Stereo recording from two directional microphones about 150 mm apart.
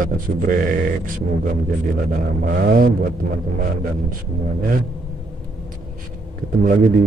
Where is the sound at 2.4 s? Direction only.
85° right.